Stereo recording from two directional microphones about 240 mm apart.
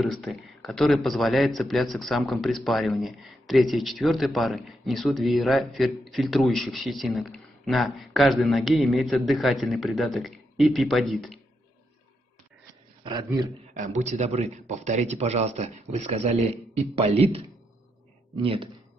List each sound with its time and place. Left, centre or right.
0.0 s a man's voice: centre
13.0 s a man's voice: centre
13.9 s a man's voice: right
18.4 s a man's voice: right